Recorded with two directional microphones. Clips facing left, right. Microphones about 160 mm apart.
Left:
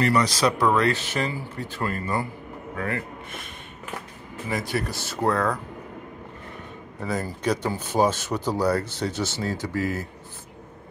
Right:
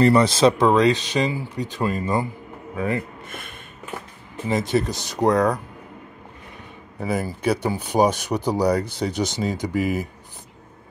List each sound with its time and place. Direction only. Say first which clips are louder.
0.0 s speech: right 6 dB; 25° right (ahead or behind)
4.5 s speech: right 6 dB; 20° right (ahead or behind)
7.0 s speech: right 4 dB; 10° right (ahead or behind)